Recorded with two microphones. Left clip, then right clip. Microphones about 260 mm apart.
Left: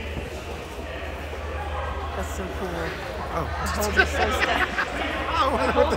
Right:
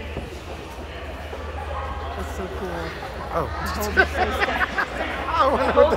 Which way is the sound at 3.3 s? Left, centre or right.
Centre.